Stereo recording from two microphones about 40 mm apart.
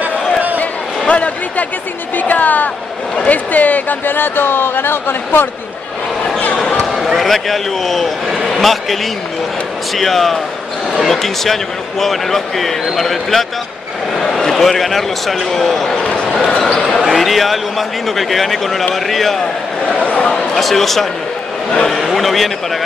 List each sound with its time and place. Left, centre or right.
0.6 s a sound: left
2.1 s a woman's voice: left
4.1 s speech: left
7.2 s a man's voice: centre
9.9 s a man's voice: centre
16.0 s speech: left
16.5 s a man's voice: centre
20.5 s a man's voice: centre